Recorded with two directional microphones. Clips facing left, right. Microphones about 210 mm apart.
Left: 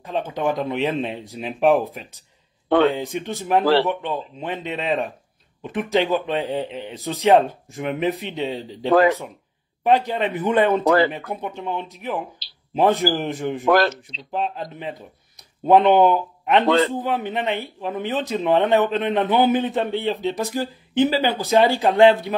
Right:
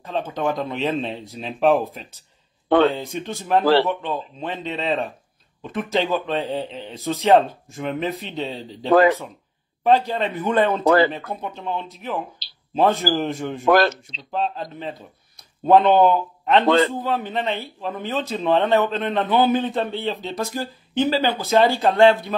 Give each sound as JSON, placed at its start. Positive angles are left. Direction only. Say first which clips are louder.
{"t": 0.0, "sound": "a man's voice", "louder": "left 1 dB", "side_deg": 15}
{"t": 9.8, "sound": "a man's voice", "louder": "even", "side_deg": 15}